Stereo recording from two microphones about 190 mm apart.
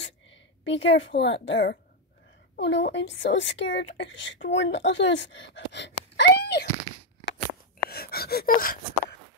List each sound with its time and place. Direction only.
0.0 s speech: 75° left (ahead or behind); by 6.7 s 60° left (ahead or behind)
7.9 s gasp: 55° left (ahead or behind)